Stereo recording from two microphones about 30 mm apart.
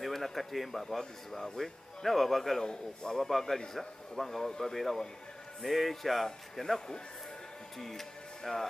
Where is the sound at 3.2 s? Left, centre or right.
Centre.